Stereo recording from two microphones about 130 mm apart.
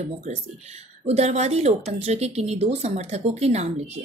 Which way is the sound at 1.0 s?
55° right (ahead or behind).